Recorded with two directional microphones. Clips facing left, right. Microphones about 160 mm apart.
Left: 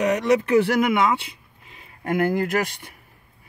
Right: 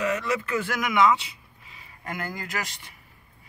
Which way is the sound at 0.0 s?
70° left (ahead or behind).